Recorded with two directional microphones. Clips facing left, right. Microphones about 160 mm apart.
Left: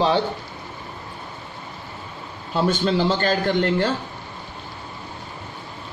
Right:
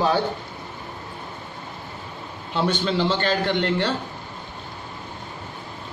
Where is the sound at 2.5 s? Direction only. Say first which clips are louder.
Left 3 dB; 40° left (ahead or behind).